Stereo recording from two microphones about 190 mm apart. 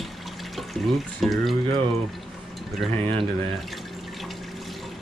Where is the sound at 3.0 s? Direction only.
30° right (ahead or behind).